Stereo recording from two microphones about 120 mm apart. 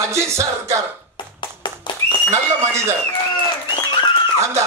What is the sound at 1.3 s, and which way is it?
Clapping, 40° left (ahead or behind).